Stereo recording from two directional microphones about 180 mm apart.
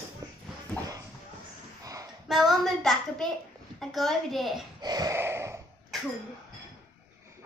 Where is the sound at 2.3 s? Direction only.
Centre (ahead or behind).